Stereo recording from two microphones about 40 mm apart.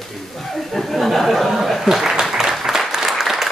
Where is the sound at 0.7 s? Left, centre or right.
Centre.